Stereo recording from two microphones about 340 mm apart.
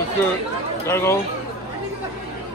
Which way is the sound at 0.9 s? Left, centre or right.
Centre.